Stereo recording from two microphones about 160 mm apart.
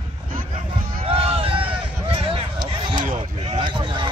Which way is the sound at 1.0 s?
40° right (ahead or behind).